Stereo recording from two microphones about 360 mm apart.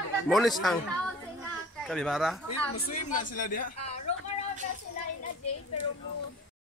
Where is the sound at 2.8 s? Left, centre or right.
Left.